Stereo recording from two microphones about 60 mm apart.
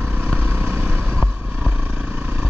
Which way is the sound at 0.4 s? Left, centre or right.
Right.